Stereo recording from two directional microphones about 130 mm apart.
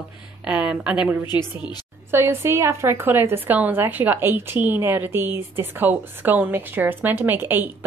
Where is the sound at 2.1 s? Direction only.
20° right (ahead or behind).